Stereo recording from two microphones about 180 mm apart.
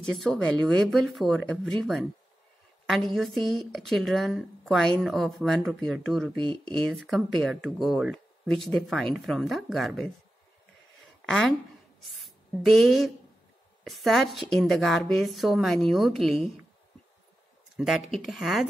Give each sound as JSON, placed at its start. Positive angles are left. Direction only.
{"t": 0.0, "sound": "speech", "side_deg": 0}
{"t": 11.2, "sound": "speech", "side_deg": 0}
{"t": 17.7, "sound": "speech", "side_deg": 0}